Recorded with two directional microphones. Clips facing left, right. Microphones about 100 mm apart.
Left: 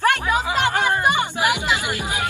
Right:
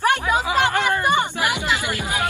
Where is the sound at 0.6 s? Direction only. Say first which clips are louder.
Even; 15° left (ahead or behind).